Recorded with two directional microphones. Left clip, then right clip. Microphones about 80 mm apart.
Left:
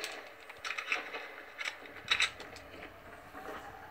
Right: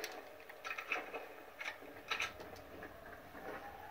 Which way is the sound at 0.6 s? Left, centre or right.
Right.